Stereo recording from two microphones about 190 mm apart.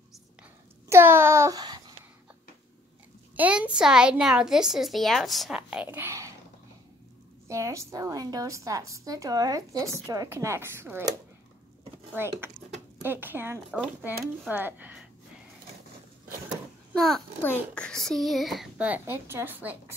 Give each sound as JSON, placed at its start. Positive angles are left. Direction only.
{"t": 0.8, "sound": "a child's voice", "side_deg": -15}
{"t": 3.3, "sound": "a woman's voice", "side_deg": -5}
{"t": 7.4, "sound": "a woman's voice", "side_deg": -15}
{"t": 12.2, "sound": "a woman's voice", "side_deg": -10}
{"t": 16.9, "sound": "a woman's voice", "side_deg": 0}